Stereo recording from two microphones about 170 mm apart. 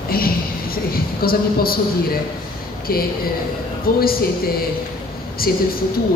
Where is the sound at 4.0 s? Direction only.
60° left (ahead or behind).